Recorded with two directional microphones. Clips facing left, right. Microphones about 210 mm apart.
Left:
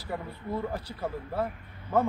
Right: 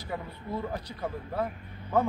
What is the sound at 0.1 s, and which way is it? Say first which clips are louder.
A man's voice: left 2 dB; centre (ahead or behind).